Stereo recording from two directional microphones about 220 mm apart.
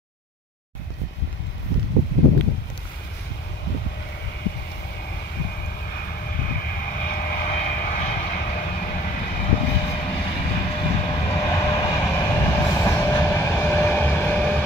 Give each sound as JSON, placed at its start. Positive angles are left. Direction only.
{"t": 6.3, "sound": "vehicle", "side_deg": 40}
{"t": 11.7, "sound": "train", "side_deg": 20}